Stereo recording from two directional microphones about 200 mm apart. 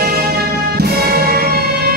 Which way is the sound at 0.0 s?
50° right (ahead or behind).